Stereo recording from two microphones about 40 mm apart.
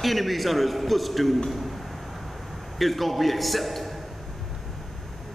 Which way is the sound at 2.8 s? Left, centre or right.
Centre.